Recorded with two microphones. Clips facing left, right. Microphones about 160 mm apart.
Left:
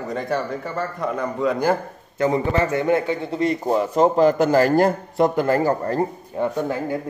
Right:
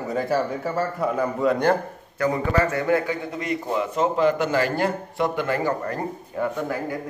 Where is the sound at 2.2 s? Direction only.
25° left (ahead or behind).